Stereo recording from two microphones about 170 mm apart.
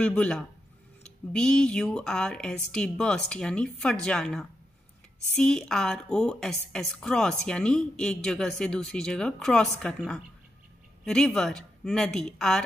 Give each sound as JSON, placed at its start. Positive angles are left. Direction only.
{"t": 0.0, "sound": "a woman's voice", "side_deg": 5}